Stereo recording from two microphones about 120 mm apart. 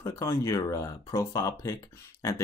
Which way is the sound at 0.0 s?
25° left (ahead or behind).